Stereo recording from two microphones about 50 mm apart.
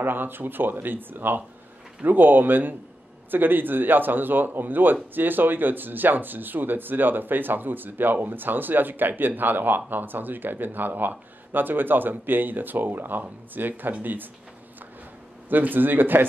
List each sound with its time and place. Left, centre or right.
0.0 s speech: right
15.5 s speech: right